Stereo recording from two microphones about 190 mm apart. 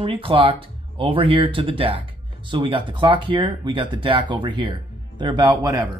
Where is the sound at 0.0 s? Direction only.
30° right (ahead or behind).